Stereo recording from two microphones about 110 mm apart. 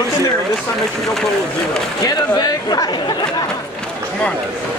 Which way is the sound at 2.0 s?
35° left (ahead or behind).